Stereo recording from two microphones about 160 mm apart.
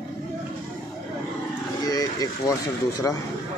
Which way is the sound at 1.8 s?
25° left (ahead or behind).